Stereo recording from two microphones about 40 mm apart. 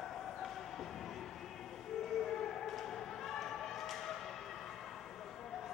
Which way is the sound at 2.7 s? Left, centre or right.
Centre.